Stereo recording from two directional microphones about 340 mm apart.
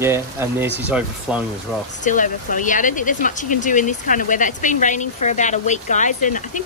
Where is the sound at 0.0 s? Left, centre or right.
Centre.